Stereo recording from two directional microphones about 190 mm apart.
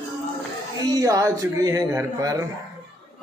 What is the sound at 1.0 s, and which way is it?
Speech, 15° right (ahead or behind).